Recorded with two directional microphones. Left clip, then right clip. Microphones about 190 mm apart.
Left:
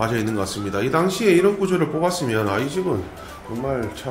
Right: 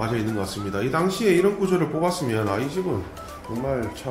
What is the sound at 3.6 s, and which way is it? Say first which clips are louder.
Speech: left 2 dB; centre (ahead or behind).